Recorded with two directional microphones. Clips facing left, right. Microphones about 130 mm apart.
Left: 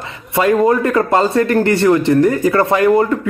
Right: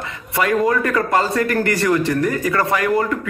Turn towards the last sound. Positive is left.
turn(degrees=25)  # may be behind; listen again after turning